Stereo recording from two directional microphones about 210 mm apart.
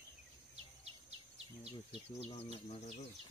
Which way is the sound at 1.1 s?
30° right (ahead or behind).